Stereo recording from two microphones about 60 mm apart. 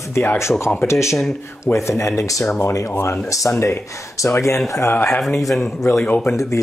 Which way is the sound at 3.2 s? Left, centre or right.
Left.